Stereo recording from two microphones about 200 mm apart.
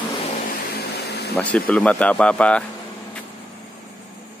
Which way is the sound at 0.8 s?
55° left (ahead or behind).